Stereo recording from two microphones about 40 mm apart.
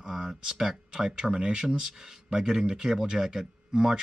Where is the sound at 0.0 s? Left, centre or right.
Centre.